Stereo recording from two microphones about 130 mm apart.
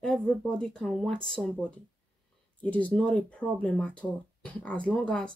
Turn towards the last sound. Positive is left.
turn(degrees=10)  # may be behind; listen again after turning